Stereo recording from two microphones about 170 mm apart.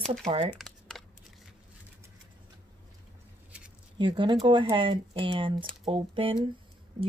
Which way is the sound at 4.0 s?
30° right (ahead or behind).